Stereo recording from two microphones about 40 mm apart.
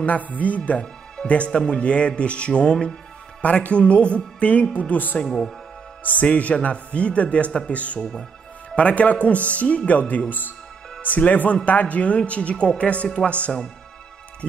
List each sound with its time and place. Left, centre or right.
0.0 s a man's voice: left
4.7 s speech: left
5.2 s speech: centre
6.0 s a man's voice: left